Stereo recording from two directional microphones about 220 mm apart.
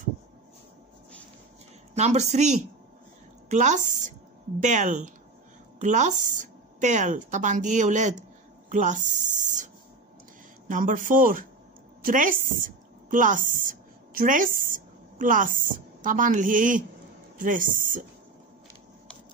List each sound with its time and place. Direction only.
2.0 s speech: 30° right (ahead or behind)
10.7 s a woman's voice: 35° right (ahead or behind)